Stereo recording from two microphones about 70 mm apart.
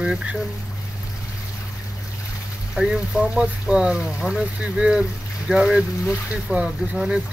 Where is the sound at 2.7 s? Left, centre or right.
Centre.